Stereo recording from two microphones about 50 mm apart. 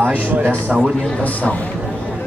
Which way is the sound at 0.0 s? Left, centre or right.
Right.